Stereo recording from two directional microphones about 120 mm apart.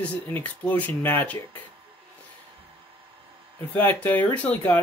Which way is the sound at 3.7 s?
15° left (ahead or behind).